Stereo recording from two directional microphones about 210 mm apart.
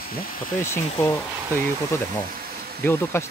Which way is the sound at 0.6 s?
10° left (ahead or behind).